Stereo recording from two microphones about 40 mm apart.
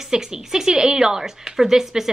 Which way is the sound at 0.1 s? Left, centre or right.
Centre.